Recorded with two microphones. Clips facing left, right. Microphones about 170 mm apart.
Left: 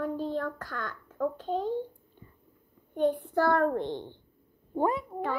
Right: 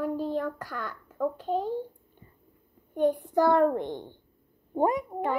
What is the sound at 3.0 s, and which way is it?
A child's voice, 15° right (ahead or behind).